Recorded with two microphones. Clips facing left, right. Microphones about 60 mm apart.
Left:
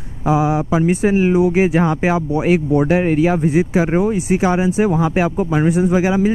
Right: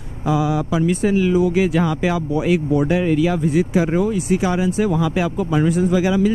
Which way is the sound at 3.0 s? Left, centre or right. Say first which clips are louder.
Left 2 dB; left.